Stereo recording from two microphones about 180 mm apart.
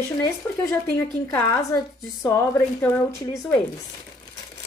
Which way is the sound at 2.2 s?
15° left (ahead or behind).